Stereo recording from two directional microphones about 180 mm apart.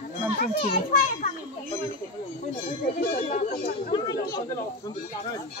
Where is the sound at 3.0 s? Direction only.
45° left (ahead or behind).